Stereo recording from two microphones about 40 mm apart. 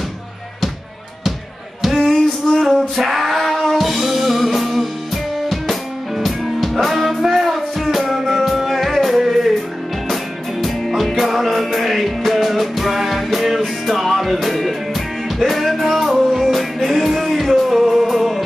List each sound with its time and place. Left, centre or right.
1.8 s a sound: centre
2.6 s music: centre
11.1 s music: centre